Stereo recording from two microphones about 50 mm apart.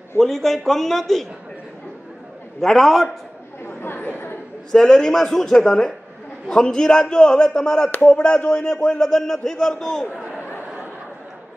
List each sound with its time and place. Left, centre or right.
0.2 s a man's voice: centre
2.6 s a man's voice: centre
3.6 s chatter: left
4.7 s a man's voice: centre